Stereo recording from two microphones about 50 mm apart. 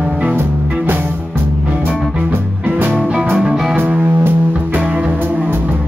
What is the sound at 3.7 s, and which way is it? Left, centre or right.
Music, right.